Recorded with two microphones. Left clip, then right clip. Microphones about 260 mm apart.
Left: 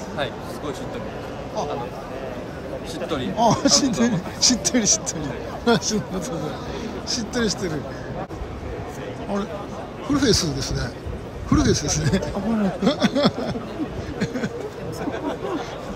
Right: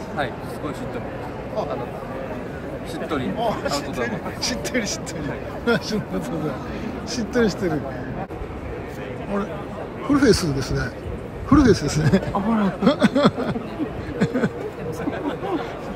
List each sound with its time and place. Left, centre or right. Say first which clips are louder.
3.3 s speech: left 9 dB; left
7.1 s speech: right 3 dB; centre
10.1 s speech: right 2 dB; centre
14.2 s a sound: right 5 dB; centre